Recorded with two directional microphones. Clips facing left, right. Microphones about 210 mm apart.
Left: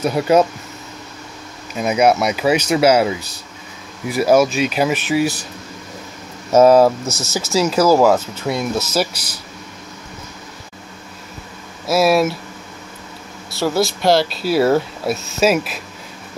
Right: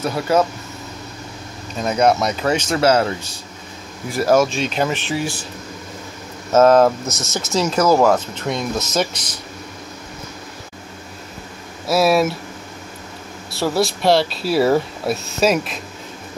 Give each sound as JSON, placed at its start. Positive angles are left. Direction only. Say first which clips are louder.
{"t": 0.0, "sound": "speech", "louder": "left 3 dB", "side_deg": 15}
{"t": 1.8, "sound": "speech", "louder": "left 2 dB", "side_deg": 10}
{"t": 6.5, "sound": "speech", "louder": "left 2 dB", "side_deg": 10}
{"t": 11.9, "sound": "speech", "louder": "left 1 dB", "side_deg": 0}
{"t": 13.5, "sound": "speech", "louder": "left 1 dB", "side_deg": 0}